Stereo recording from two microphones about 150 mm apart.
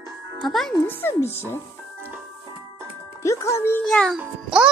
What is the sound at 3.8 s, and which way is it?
Speech, 5° left (ahead or behind).